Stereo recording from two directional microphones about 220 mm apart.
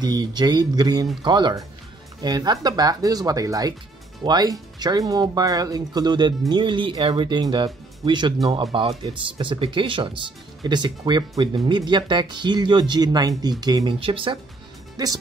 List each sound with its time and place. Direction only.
0.0 s speech: 20° right (ahead or behind)